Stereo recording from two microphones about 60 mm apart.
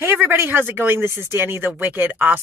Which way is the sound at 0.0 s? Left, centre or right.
Right.